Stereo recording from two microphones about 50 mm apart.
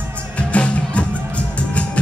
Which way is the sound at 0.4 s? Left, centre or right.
Left.